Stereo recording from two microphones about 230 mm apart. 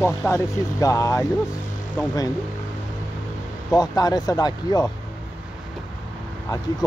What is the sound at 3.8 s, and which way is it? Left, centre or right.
Speech, centre.